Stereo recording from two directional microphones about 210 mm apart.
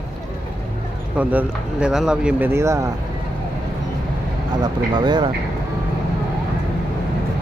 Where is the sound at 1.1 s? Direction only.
5° right (ahead or behind).